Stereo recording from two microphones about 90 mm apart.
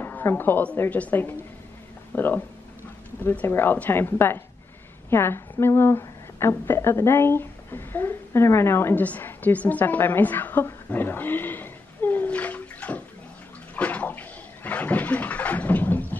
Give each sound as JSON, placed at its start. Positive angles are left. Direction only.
{"t": 0.0, "sound": "a woman's voice", "side_deg": 25}
{"t": 13.7, "sound": "bathtub", "side_deg": 20}